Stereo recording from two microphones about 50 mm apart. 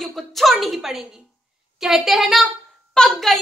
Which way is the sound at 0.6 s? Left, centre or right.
Centre.